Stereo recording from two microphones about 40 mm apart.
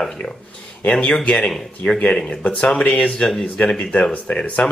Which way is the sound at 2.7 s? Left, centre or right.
Left.